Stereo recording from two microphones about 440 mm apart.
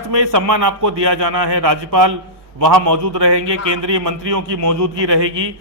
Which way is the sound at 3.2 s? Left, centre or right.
Right.